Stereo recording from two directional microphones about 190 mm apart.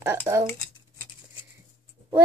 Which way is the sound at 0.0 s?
15° right (ahead or behind).